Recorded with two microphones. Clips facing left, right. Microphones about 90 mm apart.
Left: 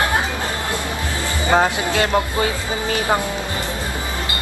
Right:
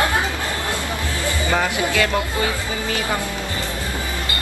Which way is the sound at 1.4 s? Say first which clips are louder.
Left 5 dB; 25° left (ahead or behind).